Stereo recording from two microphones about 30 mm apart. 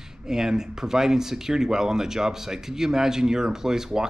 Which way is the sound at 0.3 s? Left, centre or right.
Centre.